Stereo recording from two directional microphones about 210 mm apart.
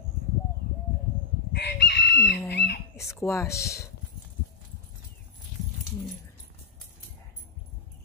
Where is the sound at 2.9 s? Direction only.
15° left (ahead or behind).